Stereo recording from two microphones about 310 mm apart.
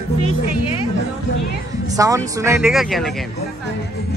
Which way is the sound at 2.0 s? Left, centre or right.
Centre.